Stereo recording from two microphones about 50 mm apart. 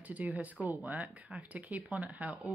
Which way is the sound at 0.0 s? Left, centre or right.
Right.